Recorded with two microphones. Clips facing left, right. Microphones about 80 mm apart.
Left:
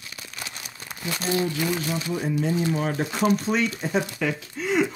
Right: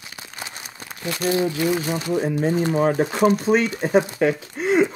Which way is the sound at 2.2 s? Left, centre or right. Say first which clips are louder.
Right 4 dB; right.